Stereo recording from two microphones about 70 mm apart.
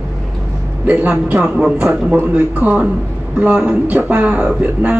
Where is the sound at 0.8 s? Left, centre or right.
Right.